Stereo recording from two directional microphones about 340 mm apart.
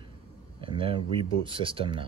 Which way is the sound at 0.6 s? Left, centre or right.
Centre.